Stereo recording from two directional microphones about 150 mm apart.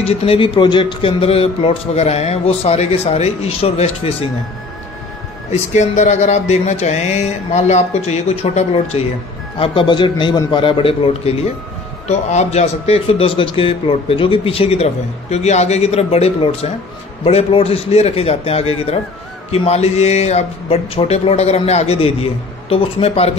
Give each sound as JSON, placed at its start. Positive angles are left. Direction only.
{"t": 0.0, "sound": "a man's voice", "side_deg": 40}
{"t": 5.5, "sound": "a man's voice", "side_deg": 50}
{"t": 9.6, "sound": "a man's voice", "side_deg": 35}
{"t": 12.1, "sound": "a man's voice", "side_deg": 50}